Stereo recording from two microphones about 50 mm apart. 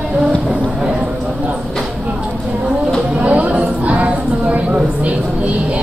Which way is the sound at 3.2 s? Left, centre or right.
Right.